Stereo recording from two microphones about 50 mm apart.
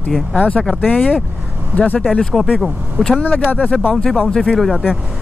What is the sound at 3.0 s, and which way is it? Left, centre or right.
Speech, right.